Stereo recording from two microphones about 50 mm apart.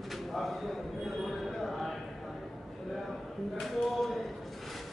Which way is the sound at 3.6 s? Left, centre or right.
Centre.